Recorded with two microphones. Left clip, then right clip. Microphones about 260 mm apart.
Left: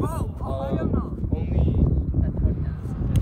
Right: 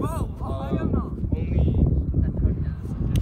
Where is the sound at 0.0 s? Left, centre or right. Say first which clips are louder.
Left 1 dB; centre.